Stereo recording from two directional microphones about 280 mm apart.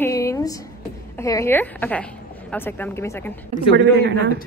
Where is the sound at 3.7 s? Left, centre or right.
Right.